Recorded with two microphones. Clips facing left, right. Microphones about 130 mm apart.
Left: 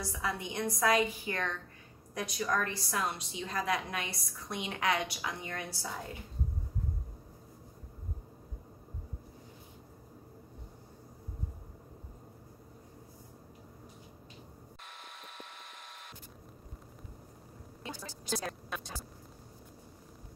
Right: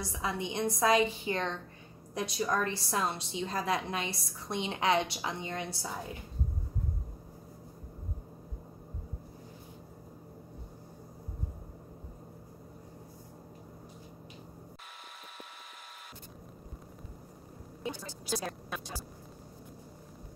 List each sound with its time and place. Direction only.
0.1 s a woman's voice: 20° right (ahead or behind)
18.3 s a woman's voice: 5° right (ahead or behind)